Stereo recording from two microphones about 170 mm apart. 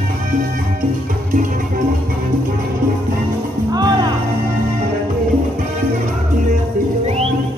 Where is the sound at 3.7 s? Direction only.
25° right (ahead or behind).